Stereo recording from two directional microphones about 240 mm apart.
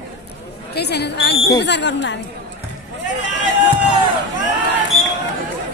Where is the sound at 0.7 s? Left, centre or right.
Left.